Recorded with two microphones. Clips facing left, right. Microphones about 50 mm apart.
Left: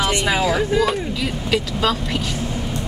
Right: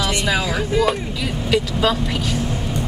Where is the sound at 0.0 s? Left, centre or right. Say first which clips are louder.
Left 1 dB; left.